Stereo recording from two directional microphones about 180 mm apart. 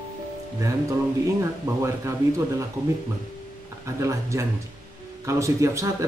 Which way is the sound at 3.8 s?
15° right (ahead or behind).